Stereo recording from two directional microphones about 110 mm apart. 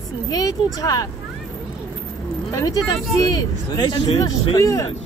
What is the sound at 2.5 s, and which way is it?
Speech, 35° left (ahead or behind).